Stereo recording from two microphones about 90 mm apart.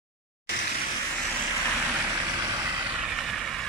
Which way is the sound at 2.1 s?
40° right (ahead or behind).